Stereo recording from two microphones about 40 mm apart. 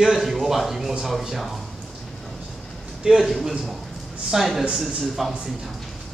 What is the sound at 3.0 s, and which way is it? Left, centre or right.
Speech, centre.